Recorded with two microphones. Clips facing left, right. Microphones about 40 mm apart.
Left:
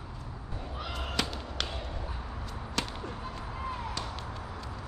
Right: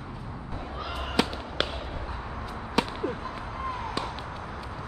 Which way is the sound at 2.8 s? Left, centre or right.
Centre.